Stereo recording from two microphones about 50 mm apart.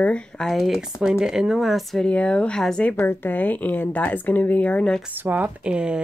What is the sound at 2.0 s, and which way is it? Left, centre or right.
Speech, left.